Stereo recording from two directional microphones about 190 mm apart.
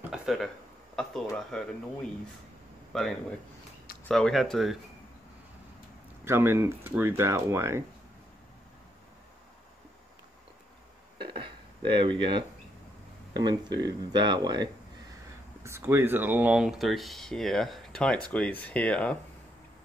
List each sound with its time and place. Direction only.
0.1 s a sound: centre (ahead or behind)
1.3 s speech: 5° left (ahead or behind)
2.9 s speech: centre (ahead or behind)
6.2 s speech: 10° right (ahead or behind)
11.1 s a sound: 25° right (ahead or behind)
13.3 s speech: 20° right (ahead or behind); by 19.1 s 5° left (ahead or behind)